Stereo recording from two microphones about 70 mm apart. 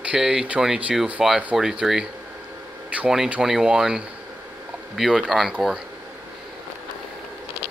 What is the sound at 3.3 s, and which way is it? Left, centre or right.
Speech, centre.